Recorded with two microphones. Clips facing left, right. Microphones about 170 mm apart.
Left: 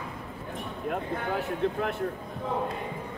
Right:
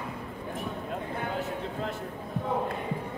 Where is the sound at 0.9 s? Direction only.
65° left (ahead or behind).